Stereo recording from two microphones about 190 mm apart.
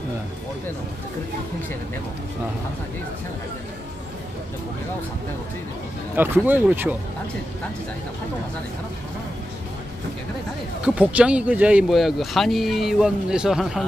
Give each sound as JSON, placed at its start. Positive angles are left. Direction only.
{"t": 6.1, "sound": "speech", "side_deg": -10}
{"t": 10.8, "sound": "speech", "side_deg": -5}